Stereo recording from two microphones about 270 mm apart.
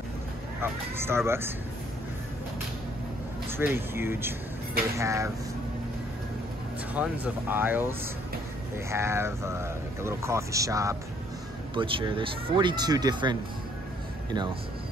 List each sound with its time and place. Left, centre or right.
0.6 s speech: centre
3.4 s speech: centre
6.9 s speech: centre